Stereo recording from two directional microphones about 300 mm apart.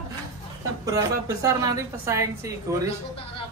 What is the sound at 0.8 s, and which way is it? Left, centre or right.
Speech, centre.